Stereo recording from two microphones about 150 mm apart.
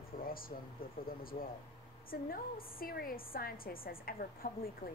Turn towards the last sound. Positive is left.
turn(degrees=75)  # may be behind; listen again after turning